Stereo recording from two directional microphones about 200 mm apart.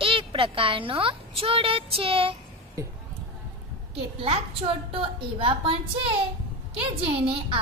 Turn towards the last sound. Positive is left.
turn(degrees=-30)  # may be behind; listen again after turning